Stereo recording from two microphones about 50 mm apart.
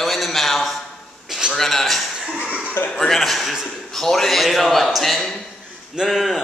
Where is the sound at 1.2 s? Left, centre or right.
Centre.